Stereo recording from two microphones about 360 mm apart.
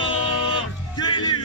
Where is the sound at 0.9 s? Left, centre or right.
Centre.